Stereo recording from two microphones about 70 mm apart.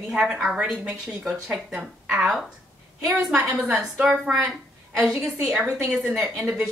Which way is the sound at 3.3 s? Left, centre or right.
Right.